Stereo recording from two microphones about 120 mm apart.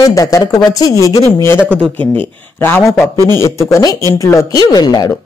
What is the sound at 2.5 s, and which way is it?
Speech, 20° left (ahead or behind).